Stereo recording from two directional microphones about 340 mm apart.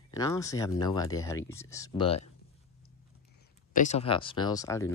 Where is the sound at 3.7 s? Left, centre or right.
Left.